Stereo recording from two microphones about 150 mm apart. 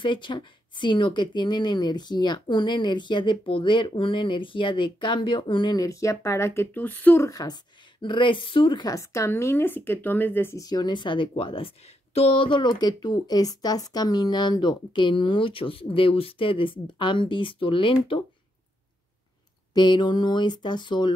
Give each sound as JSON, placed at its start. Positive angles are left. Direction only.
{"t": 0.0, "sound": "a woman's voice", "side_deg": 35}
{"t": 7.2, "sound": "a woman's voice", "side_deg": 25}
{"t": 19.7, "sound": "a woman's voice", "side_deg": 30}